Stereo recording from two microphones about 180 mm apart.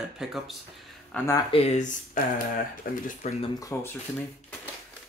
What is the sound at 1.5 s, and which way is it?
Speech, 35° left (ahead or behind).